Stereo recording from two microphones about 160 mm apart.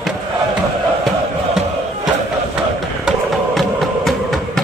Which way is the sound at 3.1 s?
Centre (ahead or behind).